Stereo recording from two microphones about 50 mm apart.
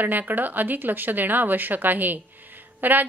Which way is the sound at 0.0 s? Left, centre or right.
Right.